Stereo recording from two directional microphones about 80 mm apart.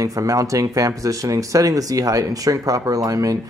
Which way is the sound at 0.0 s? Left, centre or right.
Right.